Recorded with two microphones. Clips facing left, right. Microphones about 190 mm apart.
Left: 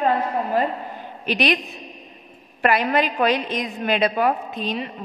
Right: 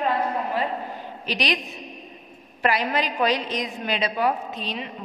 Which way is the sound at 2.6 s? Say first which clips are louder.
Left 4 dB; 55° left (ahead or behind).